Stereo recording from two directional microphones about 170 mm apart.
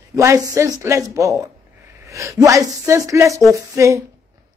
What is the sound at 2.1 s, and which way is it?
A woman's voice, 20° right (ahead or behind).